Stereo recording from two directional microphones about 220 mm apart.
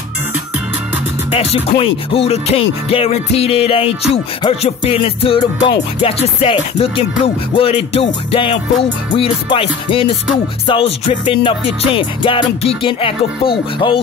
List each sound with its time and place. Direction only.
1.3 s music: 25° left (ahead or behind)